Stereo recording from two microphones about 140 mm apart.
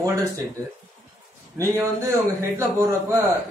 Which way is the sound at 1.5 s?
20° right (ahead or behind).